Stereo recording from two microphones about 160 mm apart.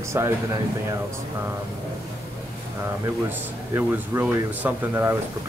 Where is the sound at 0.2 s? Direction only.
15° right (ahead or behind).